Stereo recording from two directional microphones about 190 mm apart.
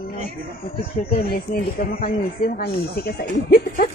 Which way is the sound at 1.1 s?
50° left (ahead or behind).